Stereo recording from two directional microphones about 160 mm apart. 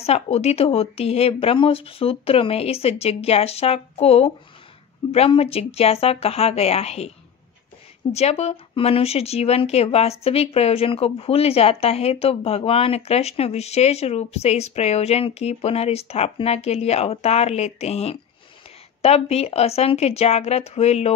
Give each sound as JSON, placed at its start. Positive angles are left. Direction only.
{"t": 0.0, "sound": "speech", "side_deg": 40}
{"t": 8.1, "sound": "speech", "side_deg": 40}